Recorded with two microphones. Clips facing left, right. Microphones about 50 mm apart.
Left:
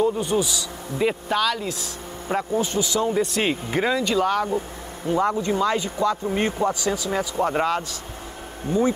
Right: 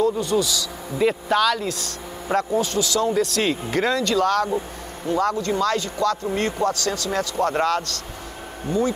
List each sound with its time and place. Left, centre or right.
0.0 s speech: left
0.9 s speech: centre
2.6 s speech: centre
4.5 s vehicle: centre
5.1 s speech: centre